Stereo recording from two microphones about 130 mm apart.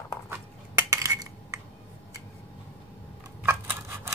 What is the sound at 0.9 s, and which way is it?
Coin, 25° right (ahead or behind).